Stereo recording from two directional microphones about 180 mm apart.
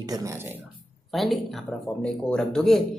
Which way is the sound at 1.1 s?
Centre (ahead or behind).